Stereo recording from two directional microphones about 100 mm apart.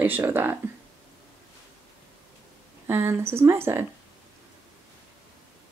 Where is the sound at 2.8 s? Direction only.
25° right (ahead or behind).